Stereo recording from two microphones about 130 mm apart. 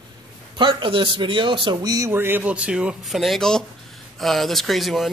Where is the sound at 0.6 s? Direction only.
35° right (ahead or behind).